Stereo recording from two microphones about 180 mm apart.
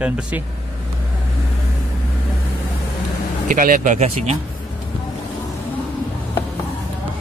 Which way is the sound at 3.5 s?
45° right (ahead or behind).